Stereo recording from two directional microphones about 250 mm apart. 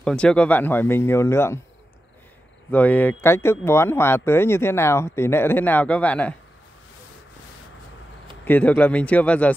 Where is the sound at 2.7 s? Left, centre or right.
Centre.